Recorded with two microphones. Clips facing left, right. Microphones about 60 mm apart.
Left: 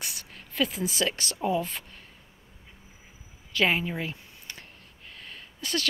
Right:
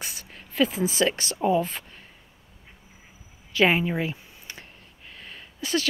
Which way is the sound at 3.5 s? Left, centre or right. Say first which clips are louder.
Right 4 dB; right.